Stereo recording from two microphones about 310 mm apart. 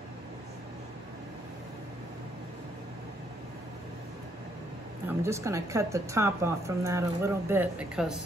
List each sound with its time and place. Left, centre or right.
5.0 s speech: centre